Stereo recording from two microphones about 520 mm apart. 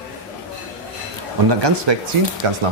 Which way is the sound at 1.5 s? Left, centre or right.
Right.